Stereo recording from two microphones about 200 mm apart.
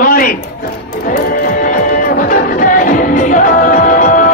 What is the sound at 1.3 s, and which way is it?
Music, 45° left (ahead or behind).